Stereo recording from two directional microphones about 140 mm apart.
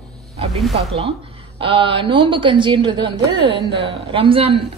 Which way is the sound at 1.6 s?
40° right (ahead or behind).